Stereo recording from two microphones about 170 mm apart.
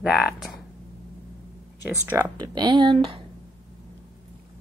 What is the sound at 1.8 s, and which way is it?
Speech, 10° right (ahead or behind).